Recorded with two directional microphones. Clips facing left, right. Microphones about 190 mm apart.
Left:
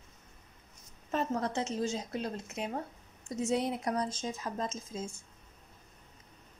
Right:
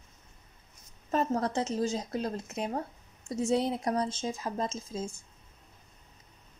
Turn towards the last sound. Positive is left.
turn(degrees=-30)  # may be behind; listen again after turning